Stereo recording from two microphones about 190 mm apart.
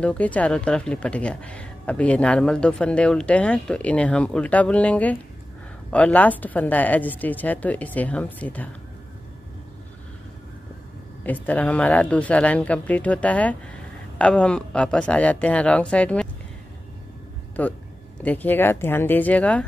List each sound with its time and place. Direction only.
0.0 s speech: 5° left (ahead or behind)
11.2 s speech: 10° left (ahead or behind)
17.6 s speech: 10° left (ahead or behind)